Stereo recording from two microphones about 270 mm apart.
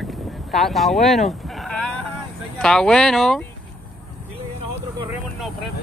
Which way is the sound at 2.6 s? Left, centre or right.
Centre.